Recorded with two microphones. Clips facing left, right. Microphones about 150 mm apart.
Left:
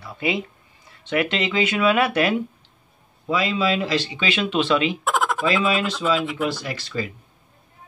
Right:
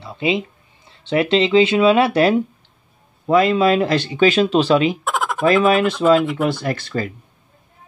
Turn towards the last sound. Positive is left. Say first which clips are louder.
# right 6 dB
turn(degrees=-55)  # may be behind; listen again after turning